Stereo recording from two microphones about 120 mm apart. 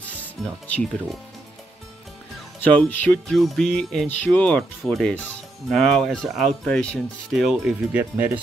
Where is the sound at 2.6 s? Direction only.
10° left (ahead or behind).